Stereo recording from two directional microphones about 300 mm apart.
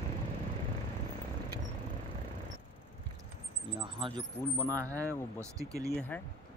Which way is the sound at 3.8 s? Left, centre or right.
Centre.